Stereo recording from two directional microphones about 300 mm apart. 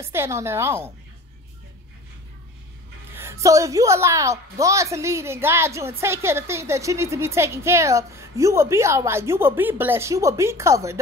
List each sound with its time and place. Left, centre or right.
0.0 s a woman's voice: centre
3.2 s a woman's voice: centre